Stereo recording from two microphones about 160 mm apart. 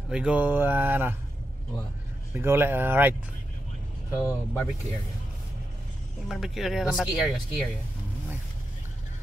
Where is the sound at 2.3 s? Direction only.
15° right (ahead or behind).